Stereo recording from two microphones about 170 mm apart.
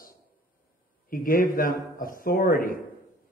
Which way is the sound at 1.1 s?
55° left (ahead or behind).